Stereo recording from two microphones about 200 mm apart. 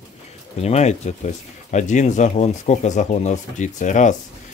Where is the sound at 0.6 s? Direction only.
35° left (ahead or behind).